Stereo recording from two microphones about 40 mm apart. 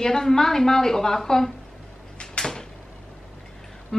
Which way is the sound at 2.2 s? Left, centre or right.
Centre.